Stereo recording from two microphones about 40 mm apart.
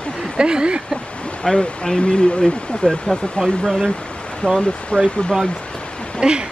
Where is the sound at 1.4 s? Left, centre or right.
Centre.